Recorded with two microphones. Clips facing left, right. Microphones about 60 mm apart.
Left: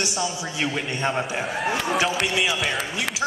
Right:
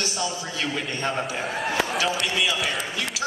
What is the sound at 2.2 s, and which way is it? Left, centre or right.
Speech, centre.